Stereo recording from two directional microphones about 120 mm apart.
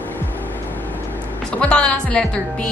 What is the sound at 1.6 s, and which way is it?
Speech, 10° left (ahead or behind).